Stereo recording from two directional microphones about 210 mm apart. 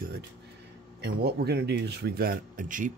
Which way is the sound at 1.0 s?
50° right (ahead or behind).